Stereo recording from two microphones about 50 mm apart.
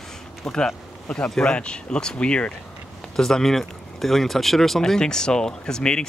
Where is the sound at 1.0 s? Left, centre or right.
Left.